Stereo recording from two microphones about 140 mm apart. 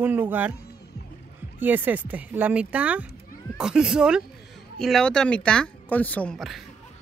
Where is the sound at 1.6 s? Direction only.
15° right (ahead or behind).